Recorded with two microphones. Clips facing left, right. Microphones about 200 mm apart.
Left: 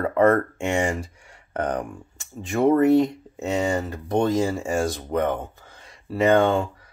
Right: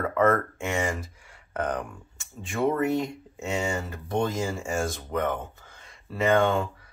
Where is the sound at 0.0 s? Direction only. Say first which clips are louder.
Left 4 dB; 30° left (ahead or behind).